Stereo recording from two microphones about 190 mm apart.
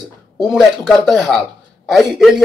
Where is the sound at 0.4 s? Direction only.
Centre (ahead or behind).